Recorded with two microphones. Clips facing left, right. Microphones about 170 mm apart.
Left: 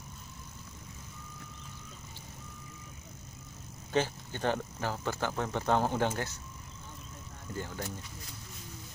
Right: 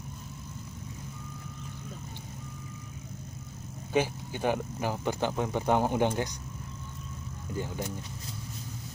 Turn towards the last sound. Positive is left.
turn(degrees=-15)  # may be behind; listen again after turning